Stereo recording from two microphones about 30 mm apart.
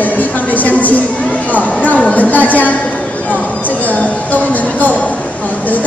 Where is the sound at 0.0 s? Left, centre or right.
Left.